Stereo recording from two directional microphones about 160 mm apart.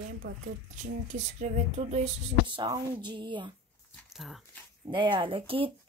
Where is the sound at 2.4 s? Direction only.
30° right (ahead or behind).